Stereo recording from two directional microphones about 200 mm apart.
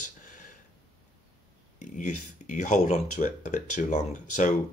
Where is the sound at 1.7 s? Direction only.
40° left (ahead or behind).